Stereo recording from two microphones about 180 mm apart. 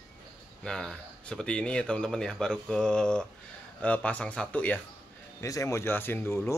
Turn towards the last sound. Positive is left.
turn(degrees=10)  # may be behind; listen again after turning